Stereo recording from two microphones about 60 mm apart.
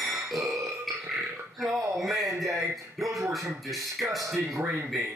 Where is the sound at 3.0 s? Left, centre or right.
Centre.